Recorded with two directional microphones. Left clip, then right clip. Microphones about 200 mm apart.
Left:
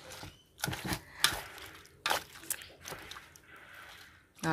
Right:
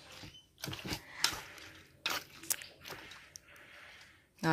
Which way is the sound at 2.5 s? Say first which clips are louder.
Right 3 dB; 20° right (ahead or behind).